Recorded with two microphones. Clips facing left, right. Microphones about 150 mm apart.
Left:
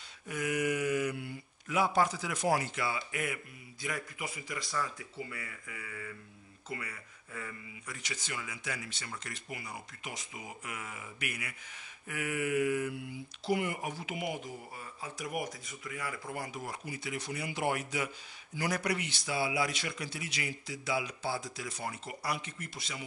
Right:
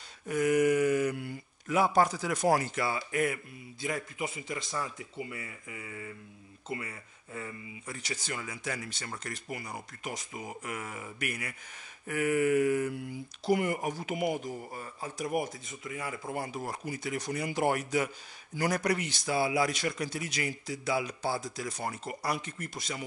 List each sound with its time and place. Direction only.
0.3 s speech: 45° right (ahead or behind)
3.8 s speech: 25° right (ahead or behind); by 23.0 s 45° right (ahead or behind)